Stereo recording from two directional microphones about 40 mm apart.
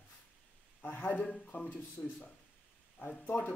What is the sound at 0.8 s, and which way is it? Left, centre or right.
Speech, left.